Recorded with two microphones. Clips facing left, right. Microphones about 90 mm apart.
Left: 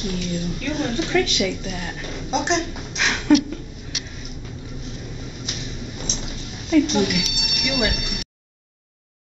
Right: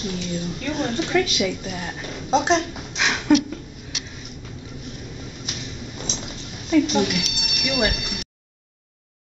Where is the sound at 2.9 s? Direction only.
5° right (ahead or behind).